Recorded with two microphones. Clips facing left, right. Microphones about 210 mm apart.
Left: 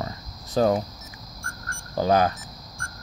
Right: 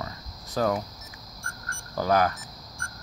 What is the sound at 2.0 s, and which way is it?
Speech, 25° left (ahead or behind).